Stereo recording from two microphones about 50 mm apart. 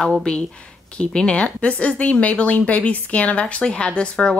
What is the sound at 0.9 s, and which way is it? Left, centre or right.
Speech, left.